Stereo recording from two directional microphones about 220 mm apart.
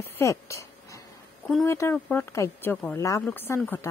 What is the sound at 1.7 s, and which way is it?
Speech, 10° left (ahead or behind).